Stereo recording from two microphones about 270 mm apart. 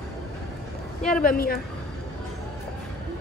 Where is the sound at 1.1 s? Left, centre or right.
Left.